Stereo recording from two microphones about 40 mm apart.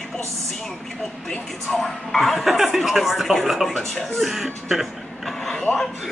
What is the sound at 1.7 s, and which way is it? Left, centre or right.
Speech, centre.